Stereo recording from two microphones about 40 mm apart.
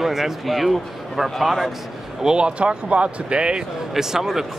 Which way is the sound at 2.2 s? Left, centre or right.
Right.